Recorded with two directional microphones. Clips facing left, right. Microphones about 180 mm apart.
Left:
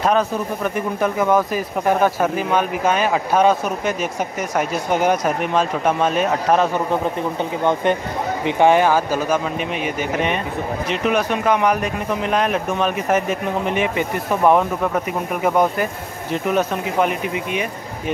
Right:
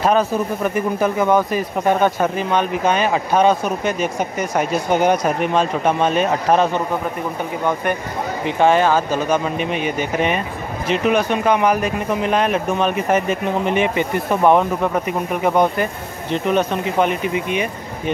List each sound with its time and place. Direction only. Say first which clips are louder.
0.0 s speech: right 2 dB; centre (ahead or behind)
7.6 s speech: left 3 dB; 20° left (ahead or behind); by 18.1 s centre (ahead or behind)